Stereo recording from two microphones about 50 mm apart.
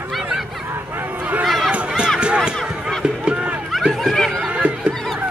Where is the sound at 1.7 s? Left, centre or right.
Right.